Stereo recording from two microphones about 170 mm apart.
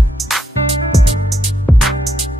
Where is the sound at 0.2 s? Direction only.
Centre (ahead or behind).